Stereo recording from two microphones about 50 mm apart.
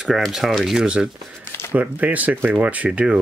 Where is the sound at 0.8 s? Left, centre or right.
Centre.